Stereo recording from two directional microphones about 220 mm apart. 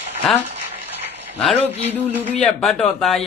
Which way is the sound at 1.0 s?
5° right (ahead or behind).